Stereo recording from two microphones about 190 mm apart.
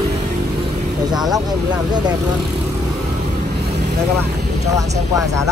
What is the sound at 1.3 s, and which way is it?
Speech, 20° right (ahead or behind).